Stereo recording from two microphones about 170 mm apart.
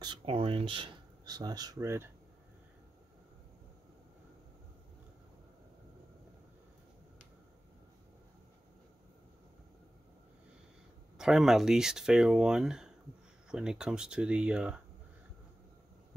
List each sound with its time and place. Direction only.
0.0 s speech: 30° right (ahead or behind)
11.1 s speech: 5° right (ahead or behind)